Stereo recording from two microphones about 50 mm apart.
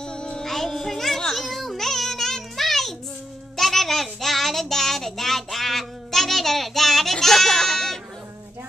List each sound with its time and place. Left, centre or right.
0.0 s music: centre
0.5 s child singing: centre